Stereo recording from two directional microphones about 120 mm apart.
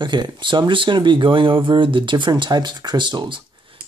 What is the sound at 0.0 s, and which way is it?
Speech, 40° right (ahead or behind).